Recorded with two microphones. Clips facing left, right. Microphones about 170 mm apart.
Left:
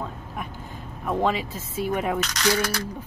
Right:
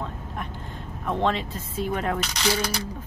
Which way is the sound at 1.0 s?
5° left (ahead or behind).